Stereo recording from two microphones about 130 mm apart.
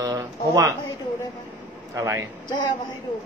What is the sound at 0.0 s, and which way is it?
Speech, 25° right (ahead or behind).